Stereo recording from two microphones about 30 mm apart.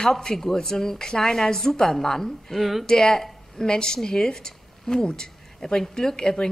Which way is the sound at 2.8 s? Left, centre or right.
Left.